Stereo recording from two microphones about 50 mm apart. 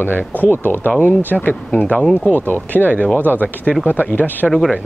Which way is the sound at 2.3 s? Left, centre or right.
Left.